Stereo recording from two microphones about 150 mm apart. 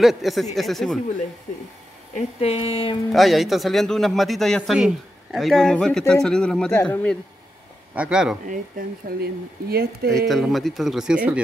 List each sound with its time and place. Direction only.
0.0 s speech: centre (ahead or behind)
2.1 s speech: 45° left (ahead or behind)
3.1 s speech: centre (ahead or behind)
6.8 s a man's voice: 15° left (ahead or behind)
7.9 s speech: 5° right (ahead or behind)
8.5 s speech: 80° right
10.2 s speech: centre (ahead or behind)